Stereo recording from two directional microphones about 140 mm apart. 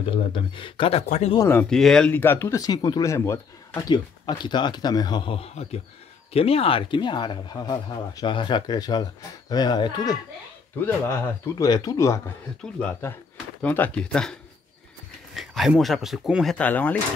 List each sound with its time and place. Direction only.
0.0 s speech: 40° left (ahead or behind)
1.7 s speech: 5° left (ahead or behind); by 3.8 s 20° left (ahead or behind)
3.9 s speech: 30° left (ahead or behind)
10.8 s speech: 15° left (ahead or behind)
12.7 s speech: 15° left (ahead or behind)
15.3 s speech: centre (ahead or behind)
16.5 s speech: 10° left (ahead or behind)